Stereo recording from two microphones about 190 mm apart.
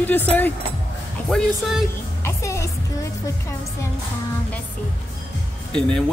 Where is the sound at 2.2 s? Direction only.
15° left (ahead or behind).